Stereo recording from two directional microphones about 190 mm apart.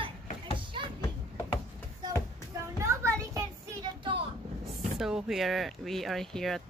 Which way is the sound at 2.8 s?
15° right (ahead or behind).